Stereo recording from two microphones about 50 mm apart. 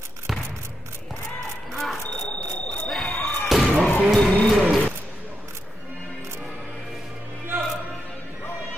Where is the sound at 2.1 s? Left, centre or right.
Left.